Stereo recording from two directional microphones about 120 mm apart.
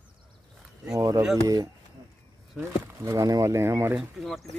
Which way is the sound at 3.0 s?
30° right (ahead or behind).